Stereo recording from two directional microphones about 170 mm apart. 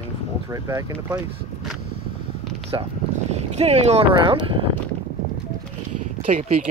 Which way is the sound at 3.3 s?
40° right (ahead or behind).